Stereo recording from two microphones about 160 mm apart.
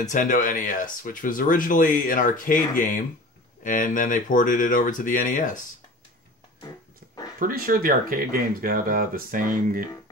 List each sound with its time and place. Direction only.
0.0 s speech: 50° left (ahead or behind)
7.3 s speech: 65° right (ahead or behind)